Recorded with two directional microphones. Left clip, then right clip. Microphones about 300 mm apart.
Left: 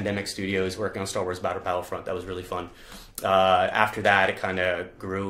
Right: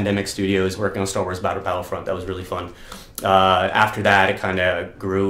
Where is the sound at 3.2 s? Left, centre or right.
Left.